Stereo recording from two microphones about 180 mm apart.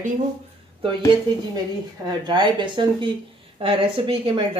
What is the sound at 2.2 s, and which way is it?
Speech, 25° right (ahead or behind).